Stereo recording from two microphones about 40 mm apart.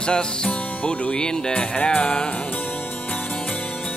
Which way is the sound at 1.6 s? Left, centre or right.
Left.